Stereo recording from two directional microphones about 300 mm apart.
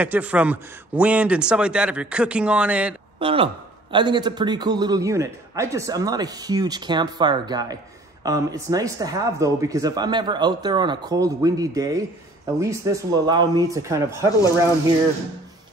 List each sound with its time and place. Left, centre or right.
0.0 s speech: centre
3.2 s a man's voice: centre